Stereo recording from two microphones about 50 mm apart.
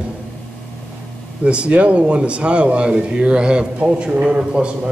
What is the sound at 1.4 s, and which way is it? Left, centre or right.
Speech, right.